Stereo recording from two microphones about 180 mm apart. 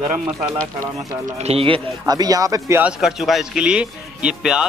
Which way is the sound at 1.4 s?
35° right (ahead or behind).